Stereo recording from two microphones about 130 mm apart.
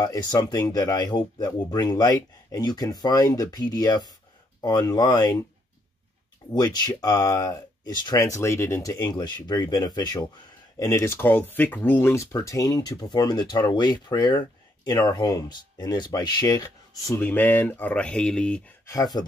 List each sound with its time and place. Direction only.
0.0 s speech: 30° left (ahead or behind)
6.5 s speech: 30° left (ahead or behind)
17.2 s speech: 15° left (ahead or behind)